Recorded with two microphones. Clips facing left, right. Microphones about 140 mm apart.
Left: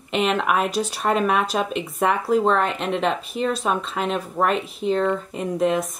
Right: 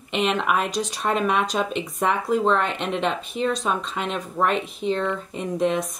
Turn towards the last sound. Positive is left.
turn(degrees=0)  # may be behind; listen again after turning